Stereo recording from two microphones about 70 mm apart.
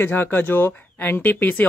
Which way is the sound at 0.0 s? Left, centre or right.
Left.